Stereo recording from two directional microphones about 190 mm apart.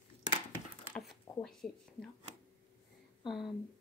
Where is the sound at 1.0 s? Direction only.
Centre (ahead or behind).